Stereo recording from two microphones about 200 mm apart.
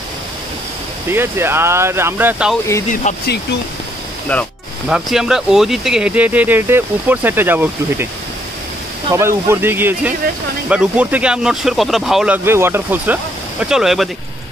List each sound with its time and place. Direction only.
1.1 s speech: 10° right (ahead or behind)
2.9 s speech: 35° left (ahead or behind)
4.8 s speech: 5° right (ahead or behind)
9.1 s speech: 15° right (ahead or behind)